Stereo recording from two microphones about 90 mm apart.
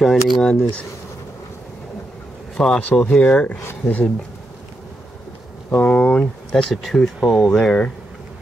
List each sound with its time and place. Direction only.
0.0 s speech: centre (ahead or behind)
2.5 s speech: 5° left (ahead or behind)
3.2 s speech: 20° left (ahead or behind)
5.8 s speech: 15° left (ahead or behind)